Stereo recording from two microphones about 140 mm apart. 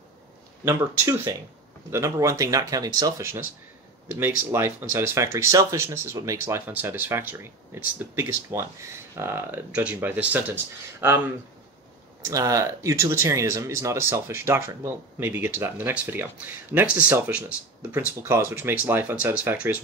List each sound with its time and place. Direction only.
0.7 s speech: 15° right (ahead or behind)